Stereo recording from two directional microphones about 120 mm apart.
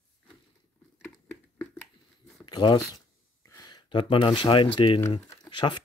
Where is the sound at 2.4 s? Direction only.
40° left (ahead or behind).